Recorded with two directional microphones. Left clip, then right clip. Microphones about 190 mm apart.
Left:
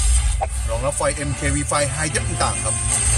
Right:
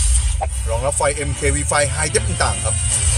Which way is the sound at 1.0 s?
25° right (ahead or behind).